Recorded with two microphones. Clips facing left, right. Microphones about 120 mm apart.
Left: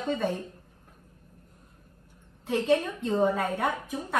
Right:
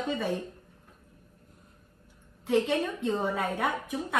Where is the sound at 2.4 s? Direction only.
5° right (ahead or behind).